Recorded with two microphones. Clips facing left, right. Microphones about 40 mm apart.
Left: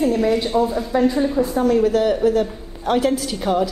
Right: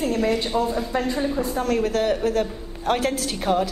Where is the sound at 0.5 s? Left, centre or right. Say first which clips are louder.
Left 5 dB; centre.